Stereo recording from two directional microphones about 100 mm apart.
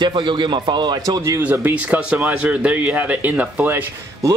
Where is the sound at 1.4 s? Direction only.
15° right (ahead or behind).